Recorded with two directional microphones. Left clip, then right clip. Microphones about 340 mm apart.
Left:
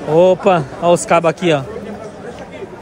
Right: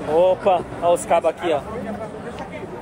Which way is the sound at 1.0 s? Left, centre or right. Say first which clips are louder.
Left 5 dB; left.